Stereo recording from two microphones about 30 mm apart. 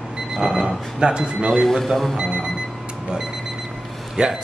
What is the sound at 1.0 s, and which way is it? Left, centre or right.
Speech, right.